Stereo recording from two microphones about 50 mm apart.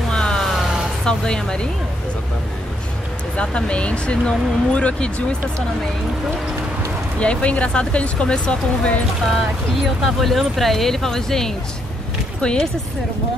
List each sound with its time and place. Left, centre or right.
0.1 s vehicle: centre
0.6 s vehicle: centre
1.0 s speech: centre
3.3 s speech: left
7.2 s speech: left
9.8 s speech: centre